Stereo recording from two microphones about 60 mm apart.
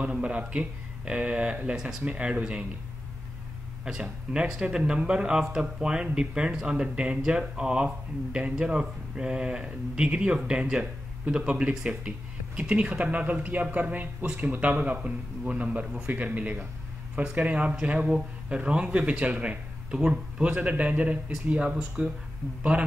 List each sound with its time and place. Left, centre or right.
0.0 s speech: right
3.8 s speech: centre